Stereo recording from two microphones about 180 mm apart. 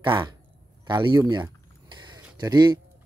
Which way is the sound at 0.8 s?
25° right (ahead or behind).